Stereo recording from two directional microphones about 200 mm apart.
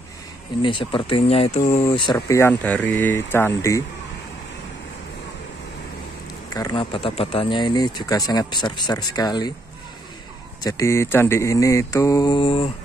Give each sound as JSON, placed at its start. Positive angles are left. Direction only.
{"t": 0.6, "sound": "speech", "side_deg": 25}
{"t": 2.1, "sound": "mantra", "side_deg": 15}
{"t": 6.5, "sound": "speech", "side_deg": 20}
{"t": 10.6, "sound": "mantra", "side_deg": 15}